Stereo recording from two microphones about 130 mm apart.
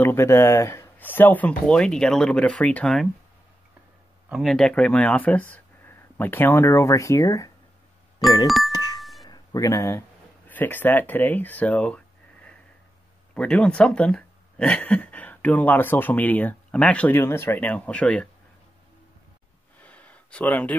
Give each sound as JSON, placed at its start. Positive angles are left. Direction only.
{"t": 0.0, "sound": "speech", "side_deg": 20}
{"t": 4.3, "sound": "speech", "side_deg": 0}
{"t": 8.5, "sound": "speech", "side_deg": 0}
{"t": 8.7, "sound": "a sound", "side_deg": 30}
{"t": 10.5, "sound": "speech", "side_deg": 15}
{"t": 19.8, "sound": "a sound", "side_deg": 10}